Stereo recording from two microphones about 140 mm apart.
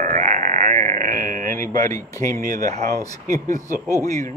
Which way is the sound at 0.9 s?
75° right (ahead or behind).